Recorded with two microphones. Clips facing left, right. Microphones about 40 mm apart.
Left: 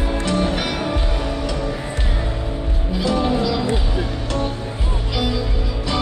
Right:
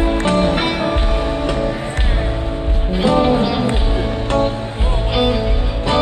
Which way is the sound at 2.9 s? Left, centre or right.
Right.